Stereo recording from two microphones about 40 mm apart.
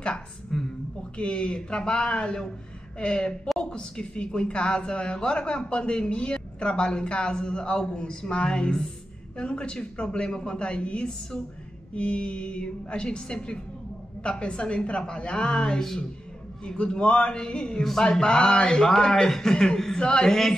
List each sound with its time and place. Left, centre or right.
0.5 s speech: centre
1.1 s a woman's voice: left